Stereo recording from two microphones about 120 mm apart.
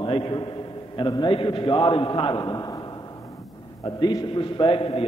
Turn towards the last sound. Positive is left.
turn(degrees=50)  # may be behind; listen again after turning